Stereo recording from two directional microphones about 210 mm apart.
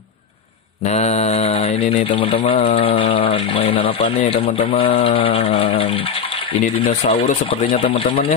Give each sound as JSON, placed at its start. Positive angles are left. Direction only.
{"t": 0.8, "sound": "speech", "side_deg": 30}
{"t": 7.2, "sound": "speech", "side_deg": 40}